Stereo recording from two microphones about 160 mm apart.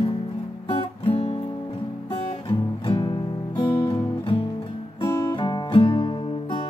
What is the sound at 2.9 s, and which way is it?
Music, 30° left (ahead or behind).